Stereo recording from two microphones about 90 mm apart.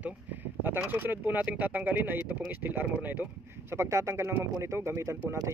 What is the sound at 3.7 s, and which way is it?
Speech, 30° right (ahead or behind).